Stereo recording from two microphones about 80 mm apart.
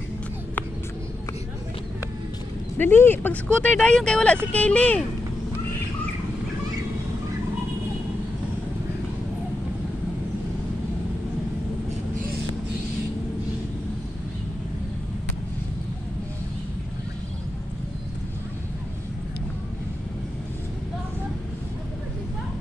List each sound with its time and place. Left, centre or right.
2.8 s speech: left